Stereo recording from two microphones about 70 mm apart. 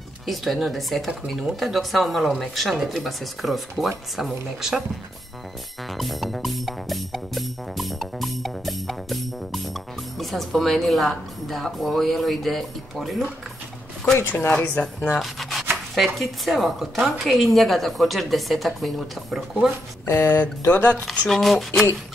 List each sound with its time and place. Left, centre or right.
0.3 s speech: centre
5.9 s speech: centre
14.1 s speech: left
14.5 s speech: centre
15.1 s rub: centre
15.9 s speech: centre
20.1 s speech: left
21.0 s speech: centre